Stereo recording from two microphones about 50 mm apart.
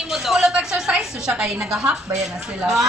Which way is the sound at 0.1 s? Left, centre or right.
Centre.